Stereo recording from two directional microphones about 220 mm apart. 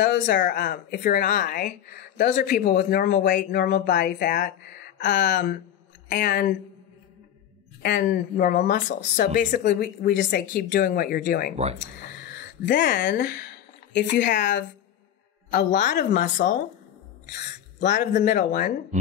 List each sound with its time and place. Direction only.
0.0 s speech: 45° left (ahead or behind)
7.8 s speech: 45° left (ahead or behind)